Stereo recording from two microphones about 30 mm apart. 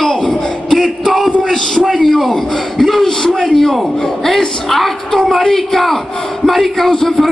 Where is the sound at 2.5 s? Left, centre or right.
Centre.